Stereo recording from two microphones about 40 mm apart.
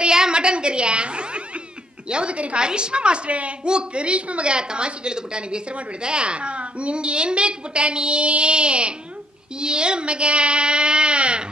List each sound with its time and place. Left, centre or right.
0.0 s a woman's voice: right